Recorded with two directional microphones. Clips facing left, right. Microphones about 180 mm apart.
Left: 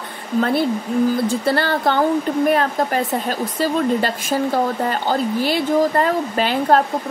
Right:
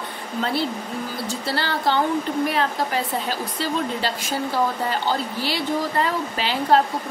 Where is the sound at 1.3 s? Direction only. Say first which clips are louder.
Left 7 dB; 55° left (ahead or behind).